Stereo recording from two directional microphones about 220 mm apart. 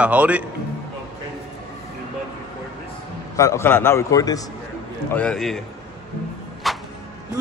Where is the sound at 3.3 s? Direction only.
15° left (ahead or behind).